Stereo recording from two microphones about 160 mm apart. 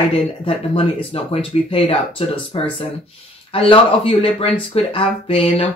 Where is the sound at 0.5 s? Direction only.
35° left (ahead or behind).